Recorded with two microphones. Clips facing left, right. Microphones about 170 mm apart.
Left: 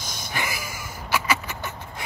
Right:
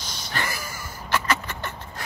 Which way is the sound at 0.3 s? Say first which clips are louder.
Even; 10° left (ahead or behind).